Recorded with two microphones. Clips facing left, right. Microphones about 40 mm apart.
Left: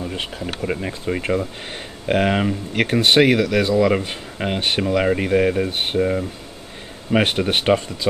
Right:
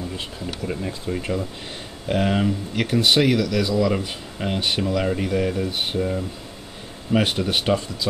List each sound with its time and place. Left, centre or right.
0.1 s speech: left
7.2 s speech: left